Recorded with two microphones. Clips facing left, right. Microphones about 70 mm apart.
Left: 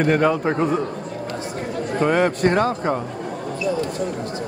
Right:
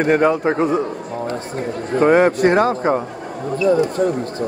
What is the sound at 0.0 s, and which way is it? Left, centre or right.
Speech, centre.